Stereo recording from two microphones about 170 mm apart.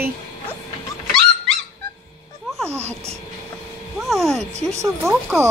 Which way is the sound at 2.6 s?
15° right (ahead or behind).